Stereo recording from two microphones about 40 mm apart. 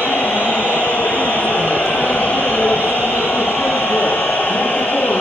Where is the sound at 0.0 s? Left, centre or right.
Left.